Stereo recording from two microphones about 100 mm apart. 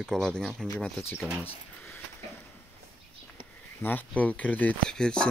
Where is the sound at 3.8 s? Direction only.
20° left (ahead or behind).